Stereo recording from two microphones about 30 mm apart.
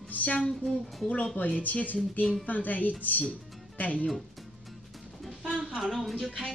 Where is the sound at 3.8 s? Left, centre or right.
Left.